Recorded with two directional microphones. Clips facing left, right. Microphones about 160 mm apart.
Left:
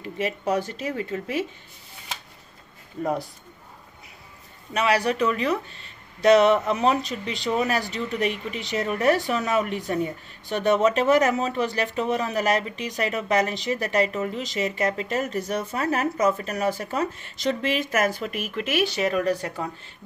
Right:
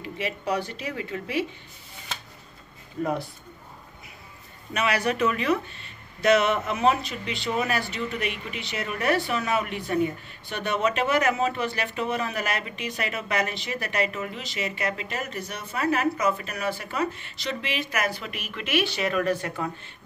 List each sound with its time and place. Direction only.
0.0 s speech: 45° left (ahead or behind)
4.7 s speech: 30° left (ahead or behind)